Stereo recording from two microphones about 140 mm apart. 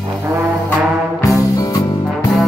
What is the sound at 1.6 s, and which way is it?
Music, 25° left (ahead or behind).